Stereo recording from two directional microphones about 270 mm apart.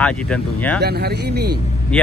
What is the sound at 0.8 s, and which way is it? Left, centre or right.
Speech, right.